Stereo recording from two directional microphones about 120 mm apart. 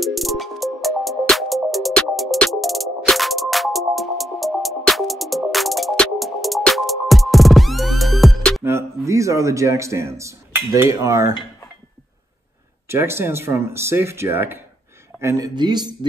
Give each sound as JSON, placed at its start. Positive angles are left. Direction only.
{"t": 0.0, "sound": "music", "side_deg": 0}
{"t": 8.6, "sound": "speech", "side_deg": -25}
{"t": 12.8, "sound": "speech", "side_deg": -20}